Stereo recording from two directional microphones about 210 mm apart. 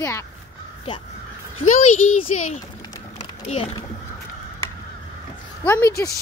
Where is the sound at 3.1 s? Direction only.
30° left (ahead or behind).